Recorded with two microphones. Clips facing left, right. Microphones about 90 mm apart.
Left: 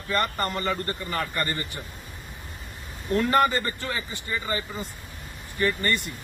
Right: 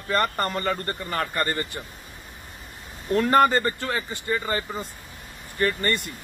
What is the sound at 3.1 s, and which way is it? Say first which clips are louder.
Speech: right 3 dB; 45° right (ahead or behind).